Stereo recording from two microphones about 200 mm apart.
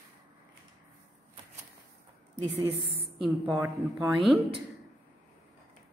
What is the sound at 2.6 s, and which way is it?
Speech, 25° right (ahead or behind).